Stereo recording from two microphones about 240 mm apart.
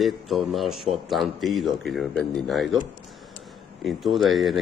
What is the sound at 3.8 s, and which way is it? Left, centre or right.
Speech, centre.